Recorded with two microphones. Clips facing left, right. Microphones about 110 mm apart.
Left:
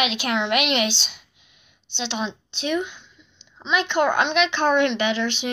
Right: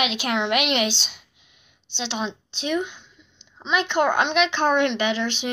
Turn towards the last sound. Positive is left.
turn(degrees=-45)  # may be behind; listen again after turning